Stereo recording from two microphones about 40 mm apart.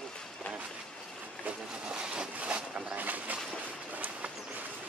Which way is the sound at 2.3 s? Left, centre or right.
Right.